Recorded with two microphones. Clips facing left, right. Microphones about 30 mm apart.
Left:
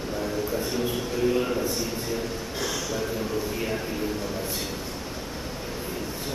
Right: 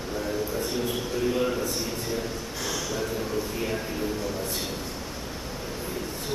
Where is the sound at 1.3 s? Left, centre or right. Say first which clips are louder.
Even; centre.